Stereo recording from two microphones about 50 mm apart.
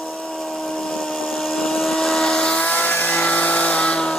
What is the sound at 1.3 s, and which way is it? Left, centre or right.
Vehicle, centre.